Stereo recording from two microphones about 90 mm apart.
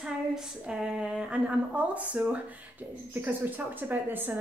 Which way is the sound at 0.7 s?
10° right (ahead or behind).